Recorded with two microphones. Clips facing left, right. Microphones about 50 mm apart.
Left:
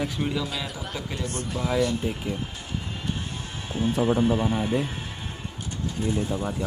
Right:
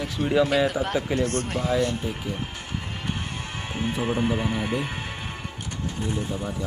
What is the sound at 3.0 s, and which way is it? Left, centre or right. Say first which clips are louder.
Music: right 1 dB; right.